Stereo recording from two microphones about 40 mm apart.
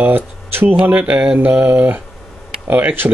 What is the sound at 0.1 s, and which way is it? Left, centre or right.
Speech, right.